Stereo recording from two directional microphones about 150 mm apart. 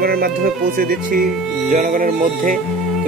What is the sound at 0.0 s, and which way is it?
Music, 85° right.